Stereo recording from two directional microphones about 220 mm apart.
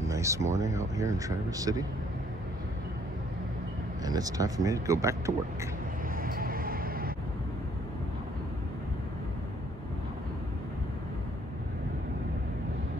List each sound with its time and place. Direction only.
0.0 s speech: 15° right (ahead or behind)
4.0 s speech: 15° right (ahead or behind)
6.2 s vehicle: 40° right (ahead or behind)